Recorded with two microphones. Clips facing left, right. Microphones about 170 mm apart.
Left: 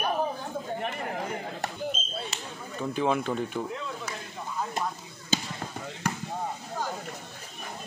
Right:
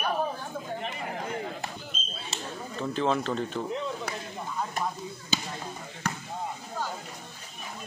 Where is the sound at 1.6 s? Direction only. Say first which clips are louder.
Left 6 dB; 55° left (ahead or behind).